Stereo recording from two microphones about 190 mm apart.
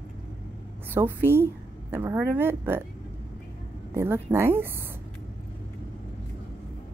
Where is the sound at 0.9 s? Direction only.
10° right (ahead or behind).